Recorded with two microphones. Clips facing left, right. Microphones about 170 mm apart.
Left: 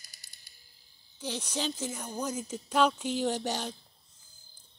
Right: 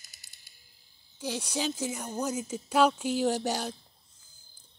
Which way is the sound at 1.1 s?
10° right (ahead or behind).